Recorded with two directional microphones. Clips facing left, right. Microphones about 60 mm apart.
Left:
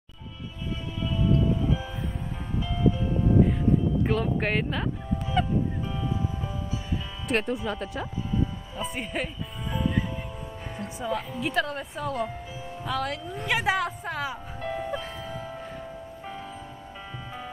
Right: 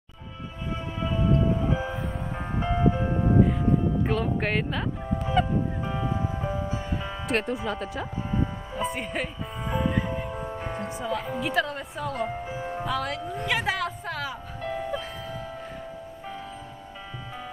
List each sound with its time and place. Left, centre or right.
1.0 s music: right
4.0 s speech: centre
5.2 s honk: centre
5.9 s music: right
7.2 s speech: centre
8.3 s music: right
8.9 s speech: centre
9.7 s music: right
10.3 s music: right
11.0 s speech: centre
12.3 s music: right
12.8 s speech: centre
14.6 s music: centre